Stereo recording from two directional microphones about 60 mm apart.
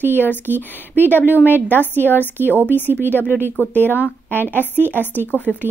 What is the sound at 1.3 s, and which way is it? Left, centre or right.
Speech, left.